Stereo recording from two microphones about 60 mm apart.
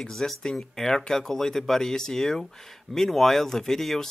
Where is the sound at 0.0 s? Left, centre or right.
Centre.